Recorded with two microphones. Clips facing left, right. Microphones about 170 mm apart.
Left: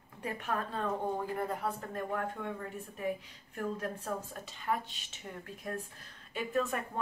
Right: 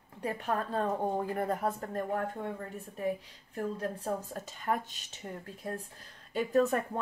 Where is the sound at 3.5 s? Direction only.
35° right (ahead or behind).